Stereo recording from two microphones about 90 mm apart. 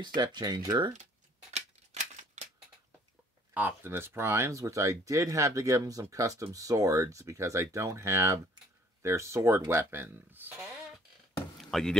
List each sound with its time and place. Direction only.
0.0 s speech: 55° right (ahead or behind)
3.5 s speech: 25° right (ahead or behind)
11.7 s speech: 5° left (ahead or behind)